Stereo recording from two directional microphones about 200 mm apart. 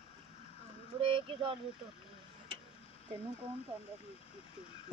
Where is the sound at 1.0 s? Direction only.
25° right (ahead or behind).